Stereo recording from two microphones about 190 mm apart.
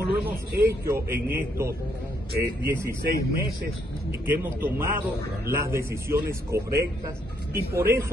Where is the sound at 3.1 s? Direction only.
55° right (ahead or behind).